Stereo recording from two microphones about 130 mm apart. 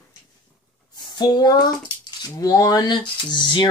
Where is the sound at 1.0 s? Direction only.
30° left (ahead or behind).